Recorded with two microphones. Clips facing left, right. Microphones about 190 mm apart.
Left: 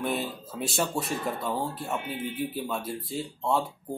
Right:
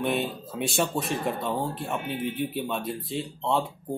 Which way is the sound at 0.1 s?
65° right (ahead or behind).